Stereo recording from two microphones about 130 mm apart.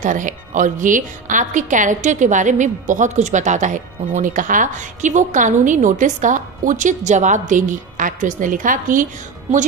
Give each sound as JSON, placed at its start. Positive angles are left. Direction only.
{"t": 0.0, "sound": "a woman's voice", "side_deg": -75}